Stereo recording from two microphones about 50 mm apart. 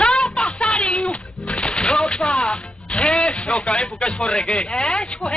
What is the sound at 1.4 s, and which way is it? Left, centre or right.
Speech, left.